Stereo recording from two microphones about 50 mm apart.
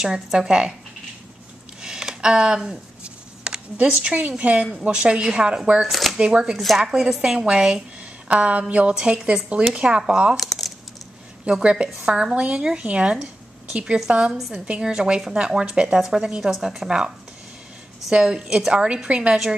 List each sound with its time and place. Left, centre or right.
0.0 s a woman's voice: centre
1.8 s a sound: centre
4.8 s a woman's voice: right
5.9 s speech: centre
6.1 s a woman's voice: centre
8.0 s a woman's voice: right
10.3 s a sound: centre
11.4 s a woman's voice: centre
14.1 s a woman's voice: right
18.1 s a woman's voice: centre